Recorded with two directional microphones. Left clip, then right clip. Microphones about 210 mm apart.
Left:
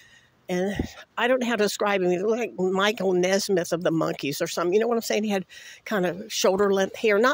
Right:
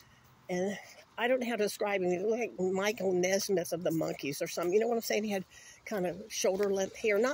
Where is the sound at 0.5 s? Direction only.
40° left (ahead or behind).